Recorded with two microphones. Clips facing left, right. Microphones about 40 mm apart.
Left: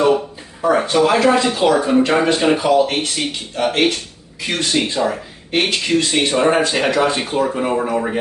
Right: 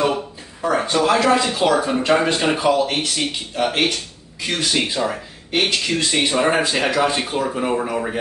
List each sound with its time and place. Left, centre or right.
0.6 s speech: centre